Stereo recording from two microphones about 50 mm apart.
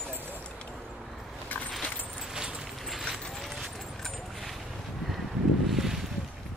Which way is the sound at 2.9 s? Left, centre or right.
Centre.